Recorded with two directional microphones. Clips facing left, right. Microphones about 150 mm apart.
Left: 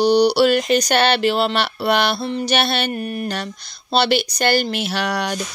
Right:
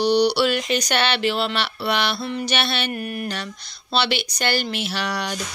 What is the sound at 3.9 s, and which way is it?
Speech, 40° left (ahead or behind).